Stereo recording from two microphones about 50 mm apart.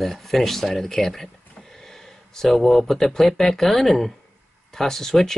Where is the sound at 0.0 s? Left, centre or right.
Centre.